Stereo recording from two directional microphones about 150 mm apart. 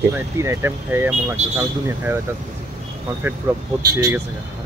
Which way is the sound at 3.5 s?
10° right (ahead or behind).